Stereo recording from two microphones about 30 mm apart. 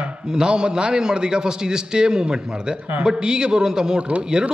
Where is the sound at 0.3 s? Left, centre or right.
Right.